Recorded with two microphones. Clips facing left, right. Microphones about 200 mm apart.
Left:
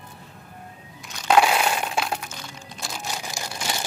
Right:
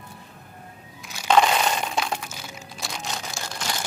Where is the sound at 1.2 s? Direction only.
5° left (ahead or behind).